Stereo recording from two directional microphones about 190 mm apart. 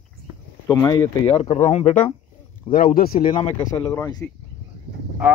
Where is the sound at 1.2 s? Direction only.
30° left (ahead or behind).